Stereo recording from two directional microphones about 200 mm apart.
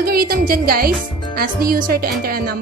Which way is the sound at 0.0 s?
50° right (ahead or behind).